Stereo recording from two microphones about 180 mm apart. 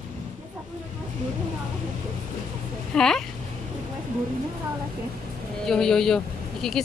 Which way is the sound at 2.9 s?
5° left (ahead or behind).